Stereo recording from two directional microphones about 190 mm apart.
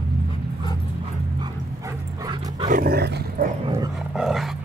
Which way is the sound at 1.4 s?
15° right (ahead or behind).